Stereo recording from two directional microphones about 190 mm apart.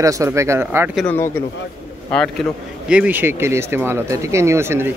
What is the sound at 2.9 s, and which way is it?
Speech, 10° right (ahead or behind).